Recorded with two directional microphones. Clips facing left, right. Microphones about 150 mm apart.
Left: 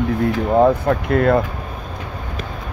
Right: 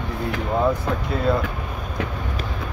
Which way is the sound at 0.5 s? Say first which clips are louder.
Left 7 dB; 60° left (ahead or behind).